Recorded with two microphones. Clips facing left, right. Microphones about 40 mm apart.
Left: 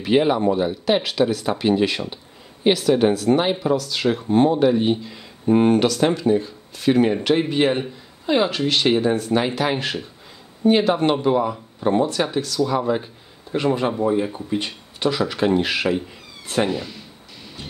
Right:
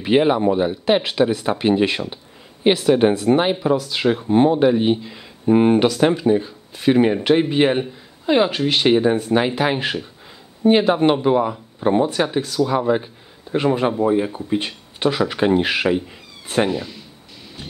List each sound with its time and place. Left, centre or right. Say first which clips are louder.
0.0 s speech: right 2 dB; right